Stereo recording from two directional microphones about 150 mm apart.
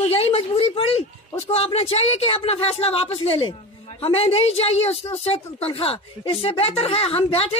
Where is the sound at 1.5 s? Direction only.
45° left (ahead or behind).